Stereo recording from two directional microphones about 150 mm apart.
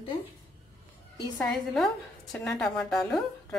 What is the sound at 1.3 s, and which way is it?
A woman's voice, 5° left (ahead or behind).